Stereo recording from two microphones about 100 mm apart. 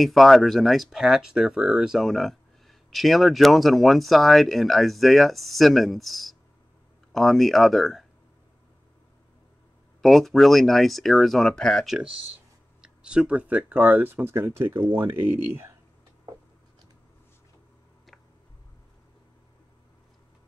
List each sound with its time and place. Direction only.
0.0 s speech: centre (ahead or behind)
10.0 s speech: centre (ahead or behind); by 15.7 s 20° right (ahead or behind)